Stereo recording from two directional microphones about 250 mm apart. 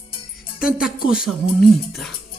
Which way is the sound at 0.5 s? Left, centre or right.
Centre.